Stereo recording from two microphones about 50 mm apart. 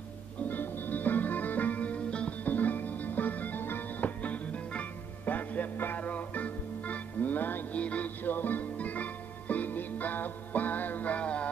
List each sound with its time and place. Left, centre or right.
0.5 s music: left
2.4 s music: left
7.7 s music: left